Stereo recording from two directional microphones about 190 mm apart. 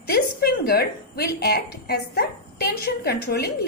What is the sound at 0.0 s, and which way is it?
A woman's voice, 55° left (ahead or behind).